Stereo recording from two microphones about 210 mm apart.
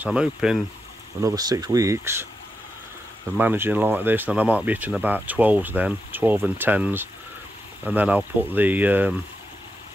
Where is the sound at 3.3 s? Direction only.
10° right (ahead or behind).